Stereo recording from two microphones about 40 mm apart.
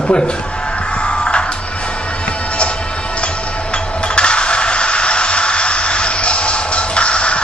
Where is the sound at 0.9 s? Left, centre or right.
Left.